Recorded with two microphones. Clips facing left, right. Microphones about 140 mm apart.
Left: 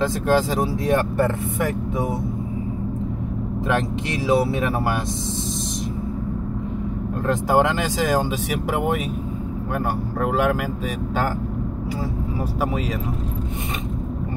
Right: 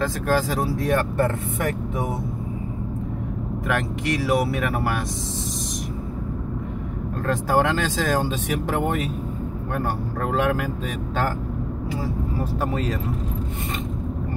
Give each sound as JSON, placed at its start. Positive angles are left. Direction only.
{"t": 0.0, "sound": "speech", "side_deg": 20}
{"t": 1.2, "sound": "speech", "side_deg": 5}
{"t": 3.6, "sound": "speech", "side_deg": 25}
{"t": 7.2, "sound": "speech", "side_deg": 15}
{"t": 12.5, "sound": "speech", "side_deg": 10}